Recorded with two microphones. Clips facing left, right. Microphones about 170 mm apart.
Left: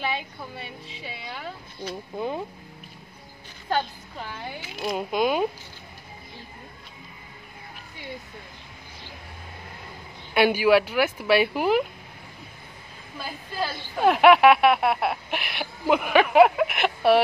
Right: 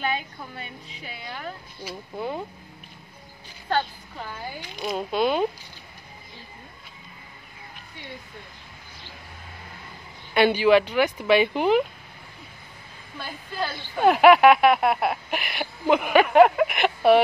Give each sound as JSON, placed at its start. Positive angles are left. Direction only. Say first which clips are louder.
{"t": 0.0, "sound": "speech", "louder": "right 1 dB", "side_deg": 0}
{"t": 2.1, "sound": "speech", "louder": "left 1 dB", "side_deg": 15}
{"t": 4.2, "sound": "speech", "louder": "even", "side_deg": 0}
{"t": 10.3, "sound": "speech", "louder": "right 1 dB", "side_deg": 10}
{"t": 13.2, "sound": "speech", "louder": "even", "side_deg": 0}